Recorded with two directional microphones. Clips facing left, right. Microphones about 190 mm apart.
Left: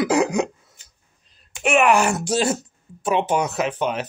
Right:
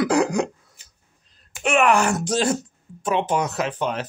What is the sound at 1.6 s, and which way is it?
Speech, 10° left (ahead or behind).